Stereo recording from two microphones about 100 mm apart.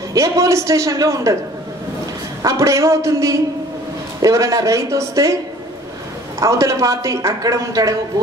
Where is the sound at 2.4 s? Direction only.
30° right (ahead or behind).